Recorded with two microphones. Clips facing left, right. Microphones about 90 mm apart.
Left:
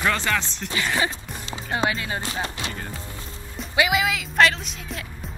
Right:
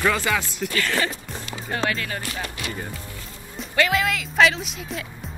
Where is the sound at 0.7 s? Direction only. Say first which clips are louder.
Left 1 dB; 15° left (ahead or behind).